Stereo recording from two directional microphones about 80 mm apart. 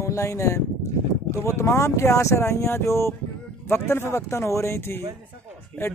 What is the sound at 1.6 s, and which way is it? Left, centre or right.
Speech, left.